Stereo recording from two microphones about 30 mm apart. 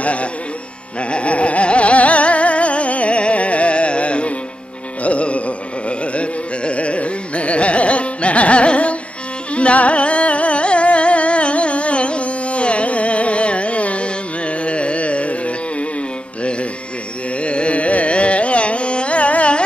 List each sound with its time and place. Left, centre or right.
0.0 s music: left
1.1 s a sound: left
5.0 s music: left
5.9 s carnatic music: left
17.4 s carnatic music: left